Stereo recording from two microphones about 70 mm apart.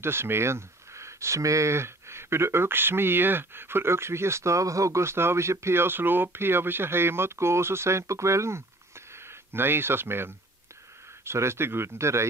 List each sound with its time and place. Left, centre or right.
0.0 s speech: right